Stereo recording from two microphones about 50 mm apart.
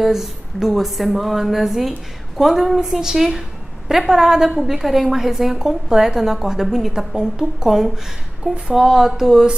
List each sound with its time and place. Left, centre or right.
0.0 s a woman's voice: centre